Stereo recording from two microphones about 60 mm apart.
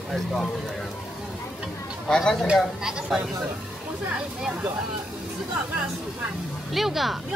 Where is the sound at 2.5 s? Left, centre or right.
Centre.